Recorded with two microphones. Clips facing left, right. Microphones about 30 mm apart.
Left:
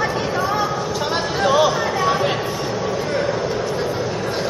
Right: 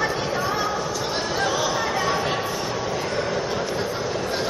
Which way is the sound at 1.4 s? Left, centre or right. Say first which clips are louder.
Left 9 dB; centre.